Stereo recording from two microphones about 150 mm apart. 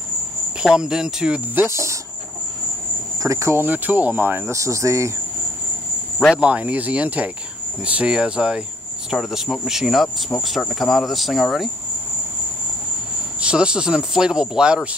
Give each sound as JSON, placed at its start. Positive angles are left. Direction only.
{"t": 0.6, "sound": "speech", "side_deg": -5}
{"t": 3.2, "sound": "speech", "side_deg": -20}
{"t": 6.3, "sound": "speech", "side_deg": -10}
{"t": 13.4, "sound": "speech", "side_deg": -5}